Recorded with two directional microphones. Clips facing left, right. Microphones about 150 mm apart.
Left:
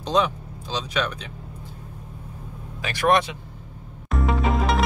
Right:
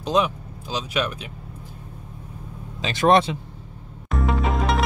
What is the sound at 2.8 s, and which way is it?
Speech, 25° right (ahead or behind).